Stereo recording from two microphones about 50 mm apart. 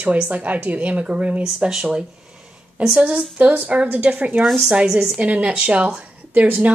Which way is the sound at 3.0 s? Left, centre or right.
Right.